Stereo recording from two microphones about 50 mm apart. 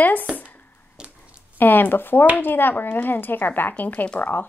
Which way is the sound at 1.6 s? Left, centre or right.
Left.